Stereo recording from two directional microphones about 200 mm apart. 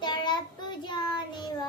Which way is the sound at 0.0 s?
20° left (ahead or behind).